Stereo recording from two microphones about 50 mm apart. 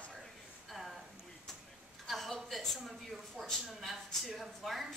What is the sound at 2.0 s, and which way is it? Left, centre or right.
A woman's voice, centre.